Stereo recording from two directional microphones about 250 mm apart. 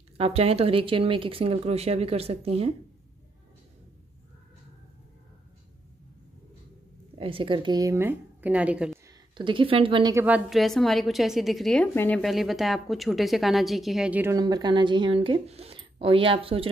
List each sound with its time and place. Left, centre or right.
0.2 s speech: right
7.2 s a woman's voice: right; by 9.0 s centre
9.3 s a woman's voice: centre